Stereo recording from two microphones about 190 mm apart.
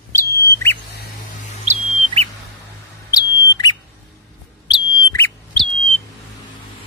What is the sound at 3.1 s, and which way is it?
Bird, 20° left (ahead or behind).